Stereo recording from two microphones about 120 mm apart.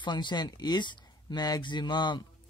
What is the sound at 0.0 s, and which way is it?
Speech, 40° left (ahead or behind).